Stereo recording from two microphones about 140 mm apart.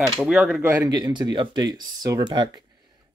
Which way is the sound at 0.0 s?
5° right (ahead or behind).